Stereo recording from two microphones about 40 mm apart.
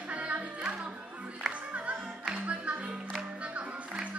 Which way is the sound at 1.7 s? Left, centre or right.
Right.